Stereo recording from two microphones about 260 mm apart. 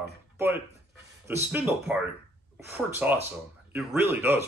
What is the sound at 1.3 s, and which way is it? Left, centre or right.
Speech, centre.